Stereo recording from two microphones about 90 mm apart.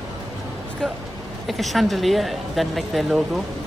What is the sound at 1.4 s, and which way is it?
Speech, centre (ahead or behind).